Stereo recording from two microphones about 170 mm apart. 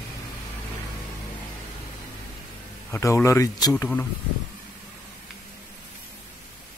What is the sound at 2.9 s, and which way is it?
Speech, 15° left (ahead or behind).